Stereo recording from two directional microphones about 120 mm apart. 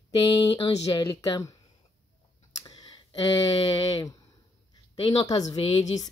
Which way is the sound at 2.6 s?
35° left (ahead or behind).